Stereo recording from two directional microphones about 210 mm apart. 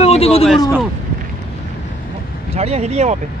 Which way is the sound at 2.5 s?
30° right (ahead or behind).